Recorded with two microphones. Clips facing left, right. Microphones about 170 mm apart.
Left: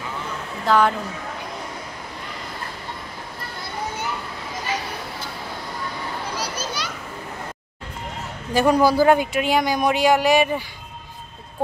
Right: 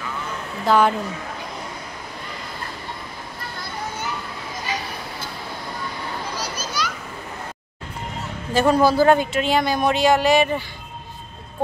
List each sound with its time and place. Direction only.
0.7 s speech: 5° right (ahead or behind)
6.4 s children playing: 30° left (ahead or behind)
8.5 s speech: 15° left (ahead or behind)